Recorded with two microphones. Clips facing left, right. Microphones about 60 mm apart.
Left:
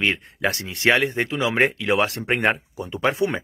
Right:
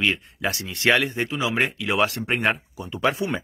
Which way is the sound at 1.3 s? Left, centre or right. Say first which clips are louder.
Left 4 dB; left.